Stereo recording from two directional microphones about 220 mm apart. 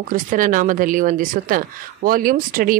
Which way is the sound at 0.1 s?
35° right (ahead or behind).